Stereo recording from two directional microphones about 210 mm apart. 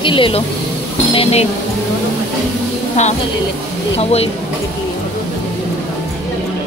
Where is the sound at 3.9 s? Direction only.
30° left (ahead or behind).